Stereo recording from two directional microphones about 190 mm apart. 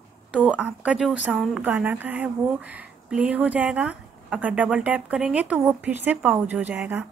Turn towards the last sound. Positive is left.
turn(degrees=-10)  # may be behind; listen again after turning